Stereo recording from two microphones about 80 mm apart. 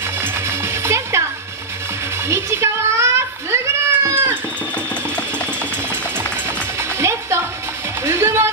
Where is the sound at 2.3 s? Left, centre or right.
Right.